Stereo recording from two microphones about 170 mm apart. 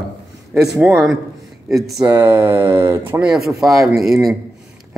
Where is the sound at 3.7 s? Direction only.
20° right (ahead or behind).